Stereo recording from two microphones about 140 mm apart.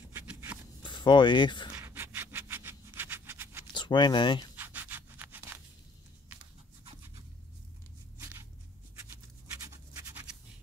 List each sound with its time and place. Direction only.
0.1 s a sound: 15° right (ahead or behind)
0.8 s speech: 35° left (ahead or behind)
1.8 s sawing: 20° right (ahead or behind)
3.7 s speech: 35° left (ahead or behind)
4.6 s scratch: 15° right (ahead or behind)
8.2 s a sound: 20° right (ahead or behind)
9.1 s scratch: 20° right (ahead or behind)